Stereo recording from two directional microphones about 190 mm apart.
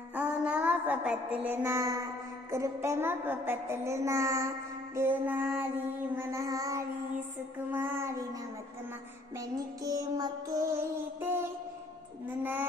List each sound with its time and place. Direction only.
0.1 s music: 5° right (ahead or behind)
2.5 s a woman's voice: 15° right (ahead or behind)
9.8 s music: 20° right (ahead or behind)
11.1 s a woman's voice: 10° right (ahead or behind)